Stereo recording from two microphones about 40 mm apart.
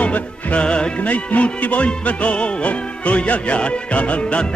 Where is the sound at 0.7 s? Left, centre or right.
Left.